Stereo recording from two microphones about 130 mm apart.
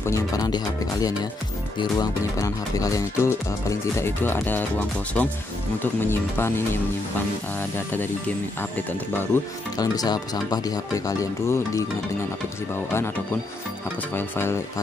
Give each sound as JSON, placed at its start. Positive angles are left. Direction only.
{"t": 0.0, "sound": "speech", "side_deg": 25}
{"t": 1.8, "sound": "speech", "side_deg": 30}
{"t": 9.3, "sound": "speech", "side_deg": 15}
{"t": 9.8, "sound": "speech", "side_deg": 30}
{"t": 14.1, "sound": "speech", "side_deg": 15}